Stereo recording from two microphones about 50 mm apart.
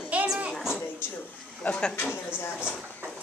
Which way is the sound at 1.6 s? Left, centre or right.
Left.